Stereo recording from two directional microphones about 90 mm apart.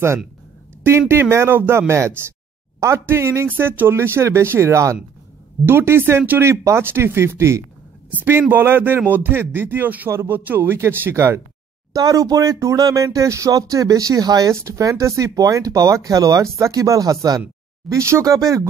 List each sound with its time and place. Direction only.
0.8 s speech: 25° right (ahead or behind)
11.9 s speech: 40° right (ahead or behind)